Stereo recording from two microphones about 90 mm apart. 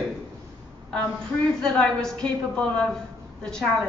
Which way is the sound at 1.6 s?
10° left (ahead or behind).